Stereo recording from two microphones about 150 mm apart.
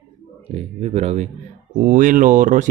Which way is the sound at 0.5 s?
45° right (ahead or behind).